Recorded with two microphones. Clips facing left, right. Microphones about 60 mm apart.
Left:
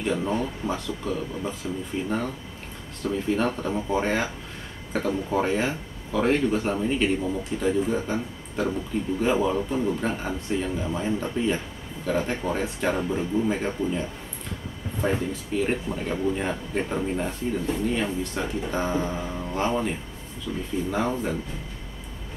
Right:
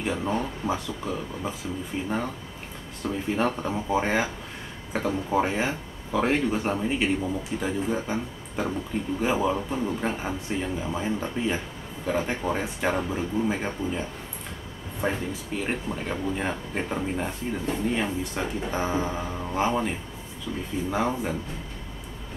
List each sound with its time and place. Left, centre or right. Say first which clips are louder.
0.0 s speech: left 2 dB; centre
20.5 s speech: left 1 dB; right
20.9 s speech: even; centre